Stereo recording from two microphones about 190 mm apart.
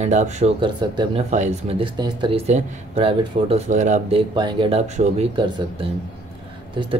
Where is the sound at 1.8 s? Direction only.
25° right (ahead or behind).